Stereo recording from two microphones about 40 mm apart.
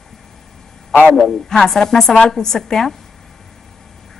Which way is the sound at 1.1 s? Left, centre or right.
Centre.